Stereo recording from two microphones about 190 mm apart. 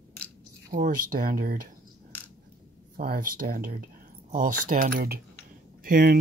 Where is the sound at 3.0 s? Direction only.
50° right (ahead or behind).